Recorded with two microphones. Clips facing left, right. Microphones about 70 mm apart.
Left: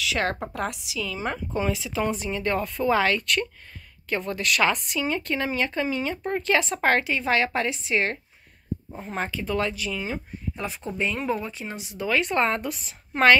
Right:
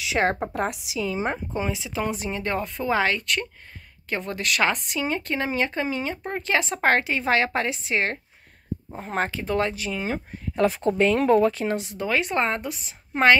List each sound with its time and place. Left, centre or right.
0.0 s speech: right
4.9 s speech: right
10.5 s speech: right
11.7 s speech: right
12.3 s speech: centre
12.6 s a woman's voice: centre